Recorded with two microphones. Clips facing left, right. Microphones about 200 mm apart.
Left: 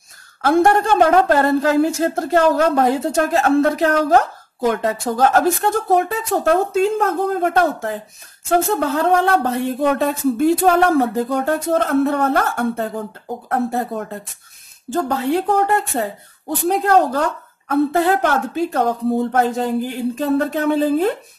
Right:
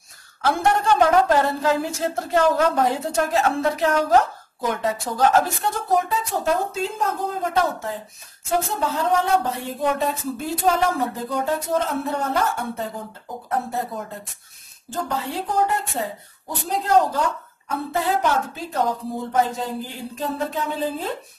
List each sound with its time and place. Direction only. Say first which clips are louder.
0.5 s a woman's voice: left 5 dB; 50° left (ahead or behind)